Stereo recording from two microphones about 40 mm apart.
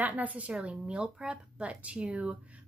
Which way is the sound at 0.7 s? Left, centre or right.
Right.